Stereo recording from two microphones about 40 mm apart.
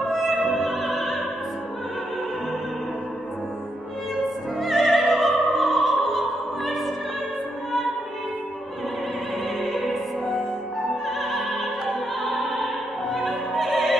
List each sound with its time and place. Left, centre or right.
0.1 s opera: centre
4.6 s opera: centre
9.6 s music: centre
11.1 s music: centre
12.6 s opera: centre